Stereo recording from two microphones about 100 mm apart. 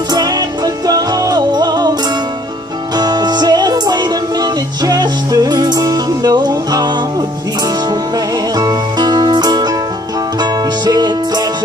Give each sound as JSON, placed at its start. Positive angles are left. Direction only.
{"t": 0.1, "sound": "music", "side_deg": -40}
{"t": 3.0, "sound": "music", "side_deg": -45}